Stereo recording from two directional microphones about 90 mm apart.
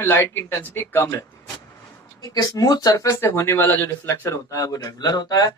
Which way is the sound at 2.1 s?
45° left (ahead or behind).